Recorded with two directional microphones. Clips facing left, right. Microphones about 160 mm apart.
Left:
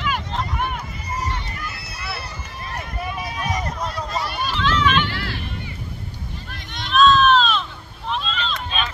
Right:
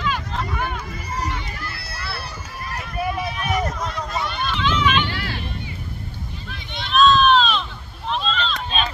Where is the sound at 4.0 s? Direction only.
10° left (ahead or behind).